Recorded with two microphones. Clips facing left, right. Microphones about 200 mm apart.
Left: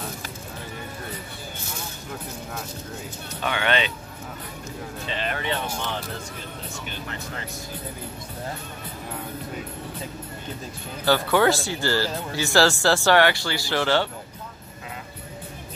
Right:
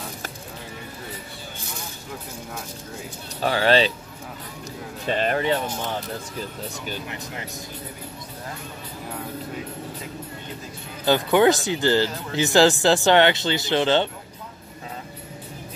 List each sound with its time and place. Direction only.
3.3 s speech: 35° right (ahead or behind)
5.0 s speech: 45° right (ahead or behind)
11.1 s speech: 15° right (ahead or behind)